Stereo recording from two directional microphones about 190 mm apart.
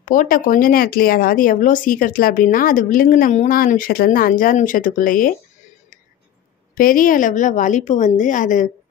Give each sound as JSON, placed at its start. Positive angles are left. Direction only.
{"t": 0.0, "sound": "speech", "side_deg": 45}
{"t": 6.7, "sound": "speech", "side_deg": 50}